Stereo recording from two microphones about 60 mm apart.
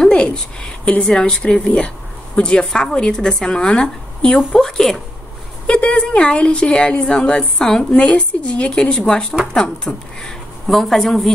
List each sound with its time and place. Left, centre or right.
0.0 s a woman's voice: centre
4.4 s speech: centre
5.7 s a woman's voice: centre